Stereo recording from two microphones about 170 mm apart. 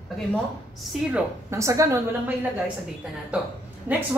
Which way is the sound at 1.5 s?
20° right (ahead or behind).